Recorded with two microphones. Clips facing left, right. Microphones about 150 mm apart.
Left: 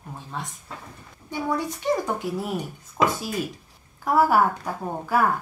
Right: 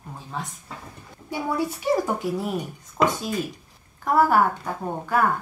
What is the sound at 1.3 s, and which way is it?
A woman's voice, 10° right (ahead or behind).